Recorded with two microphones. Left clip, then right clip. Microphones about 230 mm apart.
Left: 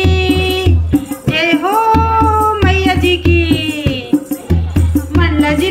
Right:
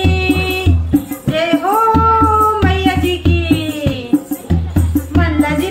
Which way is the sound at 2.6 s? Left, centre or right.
Left.